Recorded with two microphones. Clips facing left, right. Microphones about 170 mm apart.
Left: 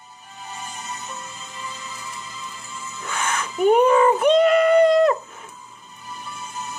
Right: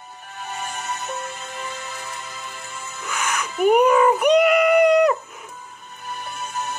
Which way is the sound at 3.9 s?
10° right (ahead or behind).